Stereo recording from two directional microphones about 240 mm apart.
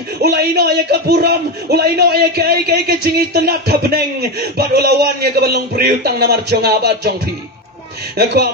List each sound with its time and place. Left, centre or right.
0.2 s a man's voice: right
8.2 s a man's voice: right